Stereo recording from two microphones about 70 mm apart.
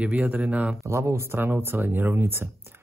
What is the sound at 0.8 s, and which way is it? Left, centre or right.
Speech, right.